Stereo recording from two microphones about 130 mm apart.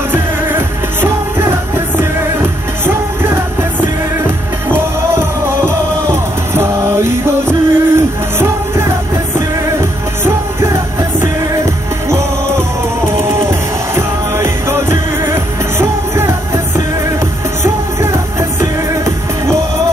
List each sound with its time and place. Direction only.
0.1 s music: 15° right (ahead or behind)
6.5 s music: 20° right (ahead or behind)
13.3 s music: 20° right (ahead or behind)